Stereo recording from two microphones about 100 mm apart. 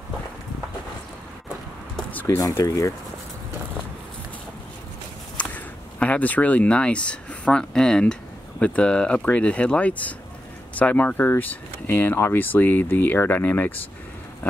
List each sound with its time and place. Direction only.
2.2 s speech: 35° left (ahead or behind)
5.4 s speech: 15° left (ahead or behind)